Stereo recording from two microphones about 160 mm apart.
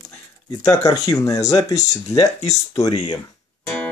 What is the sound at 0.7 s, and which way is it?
Speech, 20° left (ahead or behind).